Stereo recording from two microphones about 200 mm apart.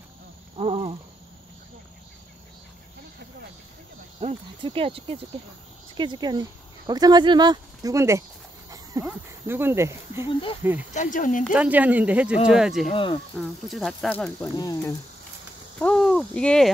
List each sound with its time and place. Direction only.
0.6 s cricket: 30° right (ahead or behind)
4.2 s speech: 30° right (ahead or behind)
8.6 s a sound: 15° right (ahead or behind)
10.6 s speech: 10° right (ahead or behind)
10.9 s speech: 40° left (ahead or behind)
11.5 s speech: 5° right (ahead or behind)
12.9 s speech: 25° left (ahead or behind)
13.4 s speech: centre (ahead or behind)
14.5 s speech: 20° left (ahead or behind)
15.8 s speech: centre (ahead or behind)